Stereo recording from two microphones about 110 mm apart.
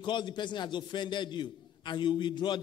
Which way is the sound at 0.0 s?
45° left (ahead or behind).